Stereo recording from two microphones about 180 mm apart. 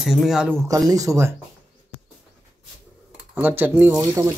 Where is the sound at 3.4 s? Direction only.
10° right (ahead or behind).